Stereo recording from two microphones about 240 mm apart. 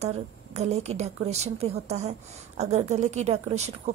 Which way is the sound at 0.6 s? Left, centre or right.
Right.